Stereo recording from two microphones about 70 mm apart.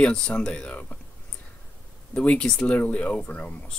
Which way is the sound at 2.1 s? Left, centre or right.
Centre.